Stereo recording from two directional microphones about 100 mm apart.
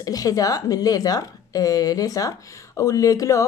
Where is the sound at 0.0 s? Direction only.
35° left (ahead or behind).